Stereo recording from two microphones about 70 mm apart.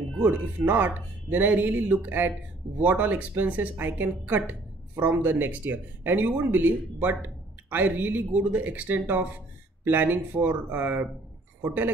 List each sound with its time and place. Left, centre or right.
0.2 s speech: right